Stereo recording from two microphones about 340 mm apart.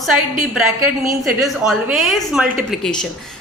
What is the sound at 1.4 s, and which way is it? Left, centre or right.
A woman's voice, centre.